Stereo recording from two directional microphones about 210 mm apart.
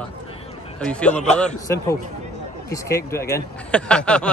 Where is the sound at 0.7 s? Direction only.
5° left (ahead or behind).